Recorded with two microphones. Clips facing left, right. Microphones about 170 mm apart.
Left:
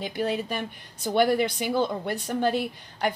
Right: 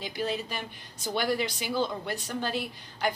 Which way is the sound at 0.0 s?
55° left (ahead or behind).